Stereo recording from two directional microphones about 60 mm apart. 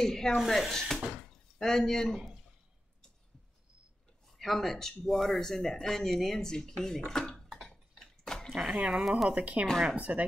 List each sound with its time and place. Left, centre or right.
0.0 s speech: centre
1.1 s door: centre
4.4 s speech: centre
7.6 s a sound: centre
8.5 s speech: centre
8.9 s speech: centre
9.3 s speech: right